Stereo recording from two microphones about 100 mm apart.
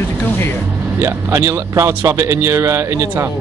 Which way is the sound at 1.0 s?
25° right (ahead or behind).